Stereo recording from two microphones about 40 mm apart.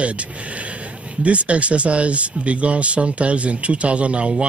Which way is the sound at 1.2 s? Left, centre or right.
Right.